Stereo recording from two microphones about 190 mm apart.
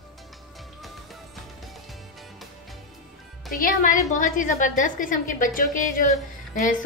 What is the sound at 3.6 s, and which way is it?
A woman's voice, 45° left (ahead or behind).